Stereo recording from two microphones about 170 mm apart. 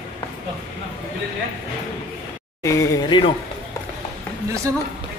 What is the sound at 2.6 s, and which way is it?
Speech, 20° left (ahead or behind).